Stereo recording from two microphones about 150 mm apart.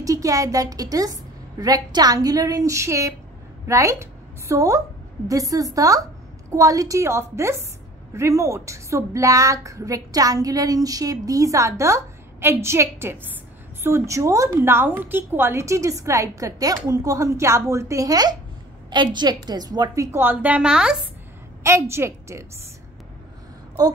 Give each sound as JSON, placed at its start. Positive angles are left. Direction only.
{"t": 0.0, "sound": "a woman's voice", "side_deg": -20}
{"t": 21.6, "sound": "a woman's voice", "side_deg": -20}